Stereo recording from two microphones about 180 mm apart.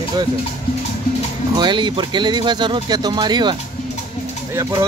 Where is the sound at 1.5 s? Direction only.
25° right (ahead or behind).